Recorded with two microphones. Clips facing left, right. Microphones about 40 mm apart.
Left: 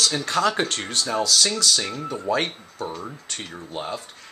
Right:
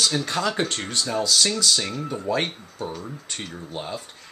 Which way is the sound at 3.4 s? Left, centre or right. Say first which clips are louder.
Left 3 dB; centre.